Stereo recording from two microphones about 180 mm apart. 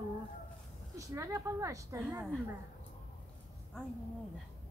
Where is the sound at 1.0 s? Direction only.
15° right (ahead or behind).